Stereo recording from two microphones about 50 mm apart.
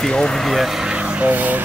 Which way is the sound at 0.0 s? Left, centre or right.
Centre.